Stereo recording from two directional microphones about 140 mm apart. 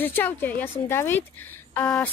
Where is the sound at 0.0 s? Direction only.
15° left (ahead or behind).